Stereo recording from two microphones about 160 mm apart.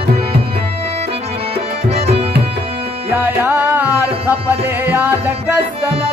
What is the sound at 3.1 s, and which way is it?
Music, 15° right (ahead or behind).